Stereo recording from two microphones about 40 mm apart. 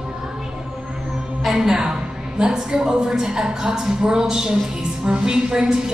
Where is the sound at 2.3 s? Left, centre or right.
Centre.